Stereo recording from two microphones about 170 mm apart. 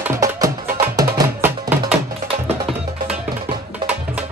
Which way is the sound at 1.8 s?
40° right (ahead or behind).